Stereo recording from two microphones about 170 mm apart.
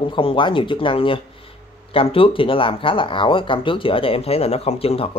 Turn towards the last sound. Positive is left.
turn(degrees=35)  # may be behind; listen again after turning